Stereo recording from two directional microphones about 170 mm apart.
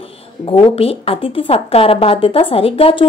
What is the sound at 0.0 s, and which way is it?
Speech, 30° left (ahead or behind).